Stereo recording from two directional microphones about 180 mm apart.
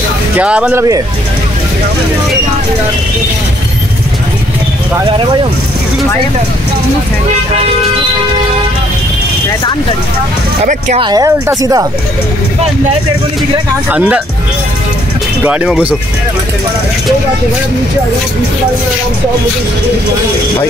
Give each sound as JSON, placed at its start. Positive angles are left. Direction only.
{"t": 0.4, "sound": "speech", "side_deg": -5}
{"t": 10.6, "sound": "speech", "side_deg": -40}
{"t": 11.0, "sound": "speech", "side_deg": -20}
{"t": 13.8, "sound": "speech", "side_deg": -5}
{"t": 15.4, "sound": "speech", "side_deg": -5}